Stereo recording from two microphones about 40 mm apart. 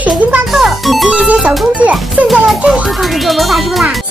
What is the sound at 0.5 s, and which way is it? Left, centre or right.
Music, centre.